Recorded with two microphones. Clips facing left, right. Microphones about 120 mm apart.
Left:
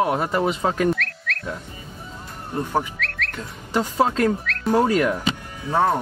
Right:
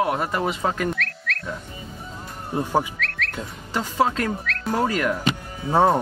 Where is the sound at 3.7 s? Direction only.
15° left (ahead or behind).